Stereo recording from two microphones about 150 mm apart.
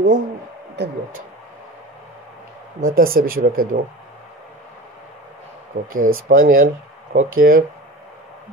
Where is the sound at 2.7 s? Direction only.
70° right (ahead or behind).